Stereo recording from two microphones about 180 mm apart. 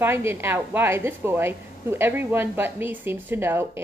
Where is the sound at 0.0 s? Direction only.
15° right (ahead or behind).